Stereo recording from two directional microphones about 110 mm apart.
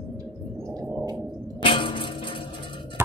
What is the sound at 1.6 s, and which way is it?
Music, 50° left (ahead or behind).